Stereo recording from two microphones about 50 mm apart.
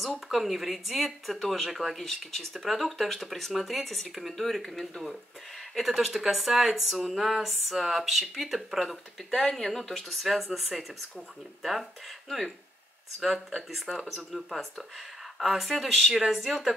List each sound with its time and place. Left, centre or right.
0.3 s speech: centre
13.7 s speech: centre